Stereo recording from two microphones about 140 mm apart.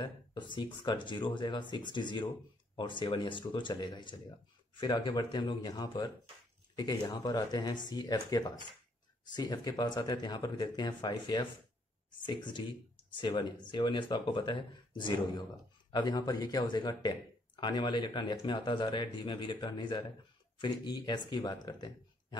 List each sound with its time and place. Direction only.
0.0 s speech: 35° left (ahead or behind)
15.9 s speech: 30° left (ahead or behind)